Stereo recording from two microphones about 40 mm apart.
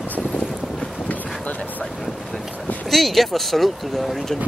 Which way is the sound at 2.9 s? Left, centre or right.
Centre.